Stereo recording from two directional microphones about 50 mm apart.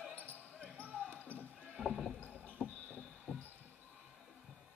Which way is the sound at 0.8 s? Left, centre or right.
Right.